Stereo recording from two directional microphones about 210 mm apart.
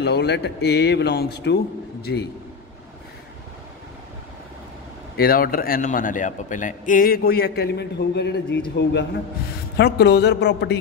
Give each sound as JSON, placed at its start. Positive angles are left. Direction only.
{"t": 0.0, "sound": "a man's voice", "side_deg": 50}
{"t": 5.1, "sound": "a man's voice", "side_deg": 45}